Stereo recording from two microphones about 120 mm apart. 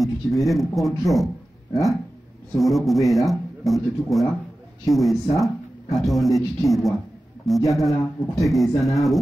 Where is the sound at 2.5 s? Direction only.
Centre (ahead or behind).